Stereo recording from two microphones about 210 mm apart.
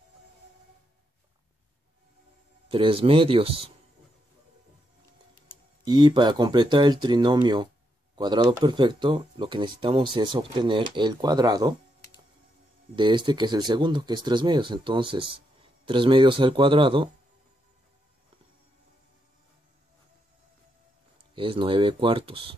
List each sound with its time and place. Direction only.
2.7 s speech: 25° right (ahead or behind)
5.9 s speech: 20° right (ahead or behind)
12.9 s speech: 20° right (ahead or behind)
21.4 s speech: 25° right (ahead or behind)